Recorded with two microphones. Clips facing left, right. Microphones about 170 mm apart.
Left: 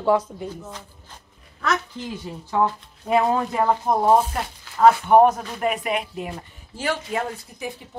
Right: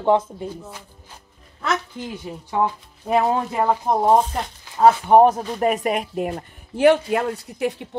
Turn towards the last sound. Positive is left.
turn(degrees=-70)  # may be behind; listen again after turning